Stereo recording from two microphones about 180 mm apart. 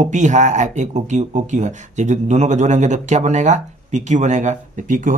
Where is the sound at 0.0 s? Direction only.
45° right (ahead or behind).